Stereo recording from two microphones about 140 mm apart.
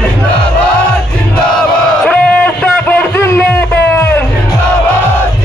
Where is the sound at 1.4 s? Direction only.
5° left (ahead or behind).